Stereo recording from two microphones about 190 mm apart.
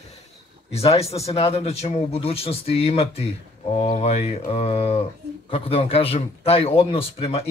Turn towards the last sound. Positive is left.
turn(degrees=30)  # may be behind; listen again after turning